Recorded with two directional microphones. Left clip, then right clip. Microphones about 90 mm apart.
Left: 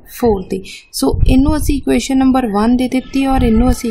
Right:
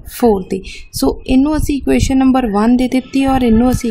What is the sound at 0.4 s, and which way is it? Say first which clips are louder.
A woman's voice: right 1 dB; 15° right (ahead or behind).